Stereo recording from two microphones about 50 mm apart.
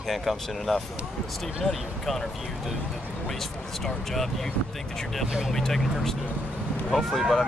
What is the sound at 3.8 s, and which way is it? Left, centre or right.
Speech, centre.